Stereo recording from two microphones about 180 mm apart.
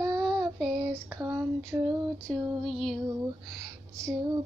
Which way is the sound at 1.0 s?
15° right (ahead or behind).